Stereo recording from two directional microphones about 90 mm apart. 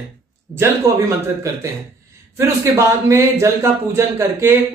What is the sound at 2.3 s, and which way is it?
A man's voice, 35° right (ahead or behind).